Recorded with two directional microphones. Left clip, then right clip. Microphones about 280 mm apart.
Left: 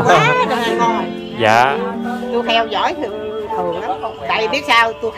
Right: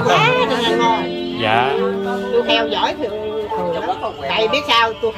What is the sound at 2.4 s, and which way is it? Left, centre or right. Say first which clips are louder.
Speech: left 5 dB; centre.